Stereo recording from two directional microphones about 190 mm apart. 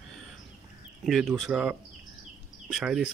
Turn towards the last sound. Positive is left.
turn(degrees=0)  # may be behind; listen again after turning